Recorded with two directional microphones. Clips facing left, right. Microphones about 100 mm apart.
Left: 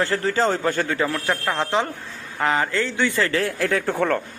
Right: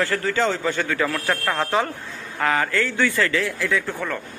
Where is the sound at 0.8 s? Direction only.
25° left (ahead or behind).